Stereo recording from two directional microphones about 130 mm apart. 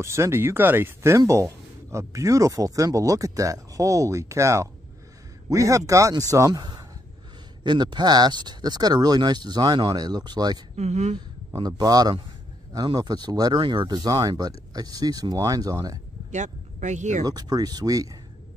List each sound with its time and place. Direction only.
0.0 s speech: 20° right (ahead or behind)
10.8 s speech: 60° right (ahead or behind)
11.1 s a man's voice: 30° right (ahead or behind)
16.3 s speech: 65° right (ahead or behind)
17.2 s speech: 30° right (ahead or behind)